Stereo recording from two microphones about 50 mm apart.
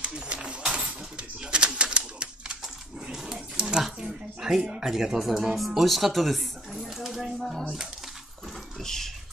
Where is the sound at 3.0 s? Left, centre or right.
Centre.